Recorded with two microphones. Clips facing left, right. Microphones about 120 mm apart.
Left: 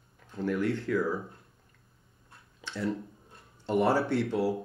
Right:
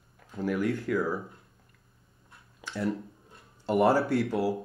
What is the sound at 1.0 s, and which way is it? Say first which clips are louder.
Speech: even; 25° right (ahead or behind).